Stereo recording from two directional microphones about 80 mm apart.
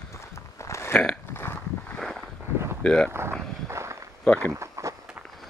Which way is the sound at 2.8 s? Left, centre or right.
Centre.